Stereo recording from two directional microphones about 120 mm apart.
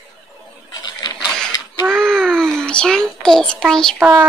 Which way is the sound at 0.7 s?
35° left (ahead or behind).